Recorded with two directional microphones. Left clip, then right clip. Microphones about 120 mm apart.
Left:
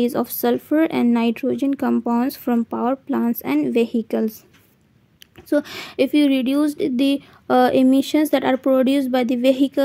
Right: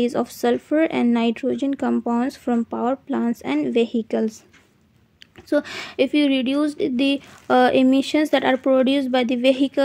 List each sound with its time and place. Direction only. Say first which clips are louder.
0.0 s speech: left 1 dB; 50° left (ahead or behind)
5.5 s speech: left 1 dB; 45° left (ahead or behind)